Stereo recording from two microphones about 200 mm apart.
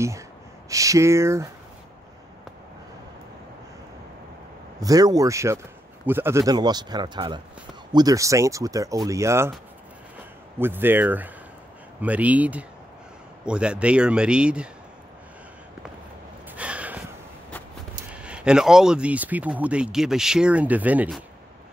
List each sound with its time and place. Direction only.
0.7 s speech: 15° right (ahead or behind)
4.7 s a man's voice: 20° right (ahead or behind)
10.6 s speech: 10° right (ahead or behind)
16.4 s a sound: 5° right (ahead or behind)
18.1 s speech: 5° right (ahead or behind)